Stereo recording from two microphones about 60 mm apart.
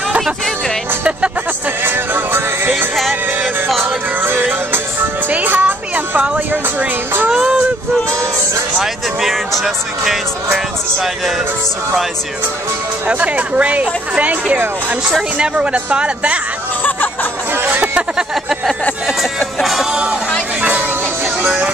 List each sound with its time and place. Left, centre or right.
1.9 s music: right
4.2 s music: right; by 7.5 s centre
9.2 s speech: centre
13.1 s speech: right
16.8 s music: left
17.6 s a sound: right
19.6 s music: centre
21.4 s music: right